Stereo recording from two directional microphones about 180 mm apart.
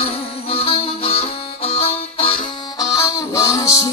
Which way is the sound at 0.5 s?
30° left (ahead or behind).